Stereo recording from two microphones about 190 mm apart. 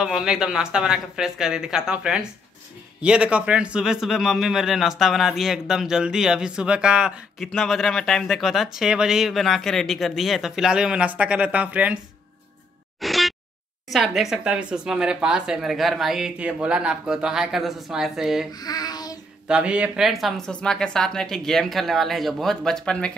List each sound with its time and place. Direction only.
0.0 s a man's voice: 5° right (ahead or behind)
13.0 s a sound: centre (ahead or behind)
13.8 s a man's voice: centre (ahead or behind)
18.5 s child singing: 20° left (ahead or behind)
19.4 s a man's voice: 5° right (ahead or behind)